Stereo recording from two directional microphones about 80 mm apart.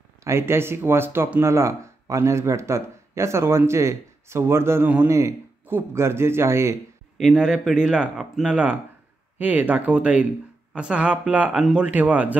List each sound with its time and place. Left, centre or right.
0.2 s speech: right
7.3 s speech: centre